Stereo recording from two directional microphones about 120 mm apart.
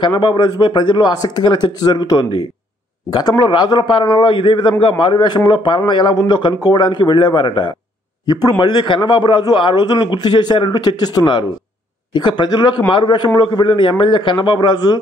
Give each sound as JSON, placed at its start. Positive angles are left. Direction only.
{"t": 0.0, "sound": "a man's voice", "side_deg": 45}